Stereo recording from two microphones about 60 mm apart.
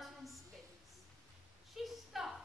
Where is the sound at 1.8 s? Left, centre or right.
Centre.